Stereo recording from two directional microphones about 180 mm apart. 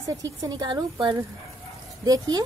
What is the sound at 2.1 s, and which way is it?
Speech, 20° right (ahead or behind).